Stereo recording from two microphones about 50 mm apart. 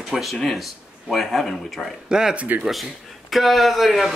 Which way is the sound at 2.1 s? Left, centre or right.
Centre.